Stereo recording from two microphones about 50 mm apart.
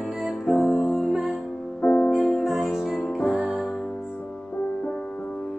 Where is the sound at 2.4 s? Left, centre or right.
Centre.